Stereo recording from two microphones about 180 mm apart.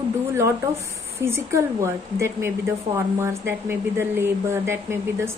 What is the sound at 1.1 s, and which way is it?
Speech, 15° right (ahead or behind).